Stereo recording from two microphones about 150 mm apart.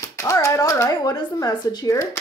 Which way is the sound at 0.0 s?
20° left (ahead or behind).